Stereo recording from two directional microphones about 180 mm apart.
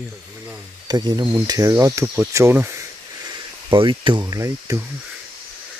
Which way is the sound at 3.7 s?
25° right (ahead or behind).